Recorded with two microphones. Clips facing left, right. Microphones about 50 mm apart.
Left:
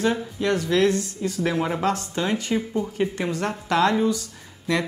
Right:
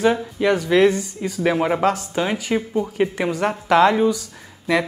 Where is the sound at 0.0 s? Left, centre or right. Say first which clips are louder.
Right 5 dB; centre.